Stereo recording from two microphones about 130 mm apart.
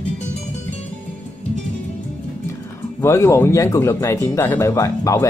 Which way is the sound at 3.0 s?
20° left (ahead or behind).